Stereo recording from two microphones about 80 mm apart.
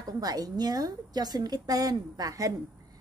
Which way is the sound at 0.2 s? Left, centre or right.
Right.